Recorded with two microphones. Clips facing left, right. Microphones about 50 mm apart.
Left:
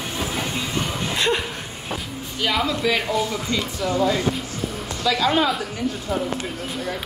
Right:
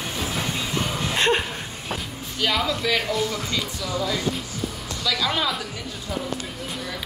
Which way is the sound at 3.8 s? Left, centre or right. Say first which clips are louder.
Left 7 dB; left.